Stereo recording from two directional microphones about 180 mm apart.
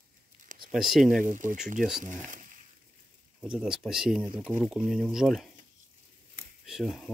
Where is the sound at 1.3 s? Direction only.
45° right (ahead or behind).